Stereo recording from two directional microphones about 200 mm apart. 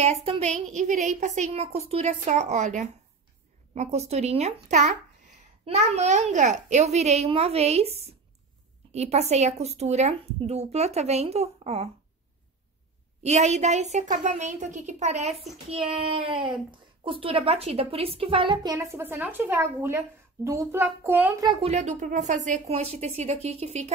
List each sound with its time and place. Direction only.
0.0 s speech: 35° right (ahead or behind)
13.2 s a child's voice: 35° right (ahead or behind); by 21.5 s 10° right (ahead or behind)
21.5 s speech: 35° right (ahead or behind)